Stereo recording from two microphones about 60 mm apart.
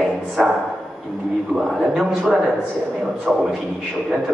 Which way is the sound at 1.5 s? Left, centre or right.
Centre.